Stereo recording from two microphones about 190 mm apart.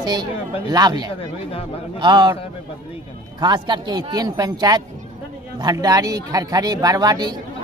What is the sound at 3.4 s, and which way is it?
Speech, 25° right (ahead or behind).